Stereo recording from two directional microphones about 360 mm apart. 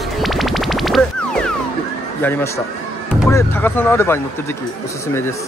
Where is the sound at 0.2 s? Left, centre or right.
Centre.